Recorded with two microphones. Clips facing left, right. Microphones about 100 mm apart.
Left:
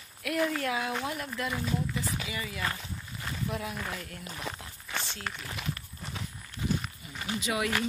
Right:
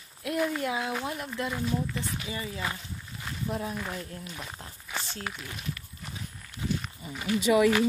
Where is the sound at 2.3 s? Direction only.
30° right (ahead or behind).